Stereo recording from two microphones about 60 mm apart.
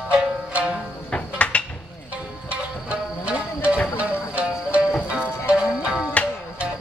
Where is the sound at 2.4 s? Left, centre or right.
Right.